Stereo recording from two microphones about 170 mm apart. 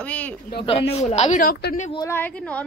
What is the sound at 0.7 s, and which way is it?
Speech, 35° left (ahead or behind).